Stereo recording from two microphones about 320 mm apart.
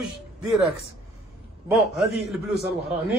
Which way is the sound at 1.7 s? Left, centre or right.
Centre.